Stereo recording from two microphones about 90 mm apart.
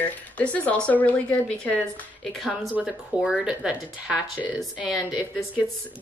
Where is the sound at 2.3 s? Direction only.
Centre (ahead or behind).